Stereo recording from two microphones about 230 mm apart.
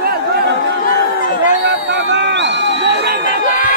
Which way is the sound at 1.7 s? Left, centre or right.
Right.